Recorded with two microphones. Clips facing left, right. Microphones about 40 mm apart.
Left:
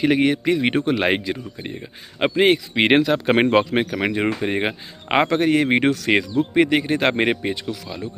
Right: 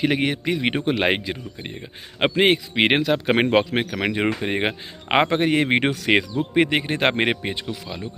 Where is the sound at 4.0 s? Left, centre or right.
Centre.